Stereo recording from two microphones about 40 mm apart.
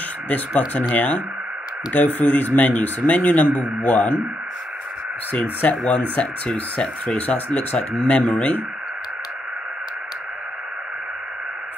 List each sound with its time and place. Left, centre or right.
0.9 s a man's voice: left
5.6 s speech: left
8.4 s a man's voice: left